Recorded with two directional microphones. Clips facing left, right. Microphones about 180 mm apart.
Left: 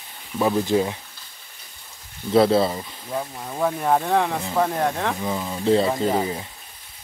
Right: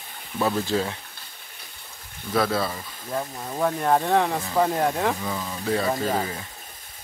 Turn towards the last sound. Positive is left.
turn(degrees=20)  # may be behind; listen again after turning